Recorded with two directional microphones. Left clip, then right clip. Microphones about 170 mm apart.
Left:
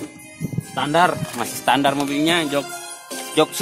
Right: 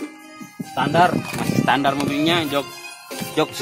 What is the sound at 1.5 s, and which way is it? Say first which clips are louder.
Speech: left 1 dB; 35° left (ahead or behind).